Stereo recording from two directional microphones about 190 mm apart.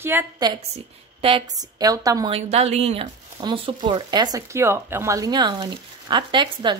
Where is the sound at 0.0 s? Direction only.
10° right (ahead or behind).